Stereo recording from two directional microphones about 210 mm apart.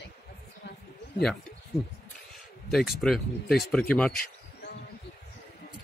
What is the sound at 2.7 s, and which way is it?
Speech, centre (ahead or behind).